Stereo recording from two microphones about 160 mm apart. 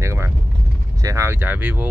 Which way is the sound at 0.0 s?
15° right (ahead or behind).